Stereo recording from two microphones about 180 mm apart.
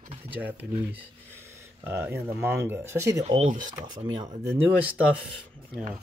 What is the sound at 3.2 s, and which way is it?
Speech, 30° right (ahead or behind).